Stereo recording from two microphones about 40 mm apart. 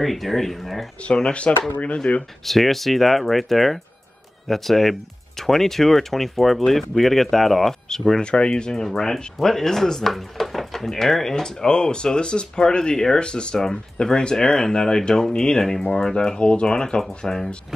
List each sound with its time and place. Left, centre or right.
0.0 s speech: centre
1.0 s speech: left
2.4 s speech: centre
8.2 s speech: left
14.3 s speech: centre